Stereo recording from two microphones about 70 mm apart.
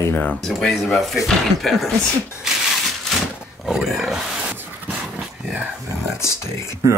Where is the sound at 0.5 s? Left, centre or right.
Centre.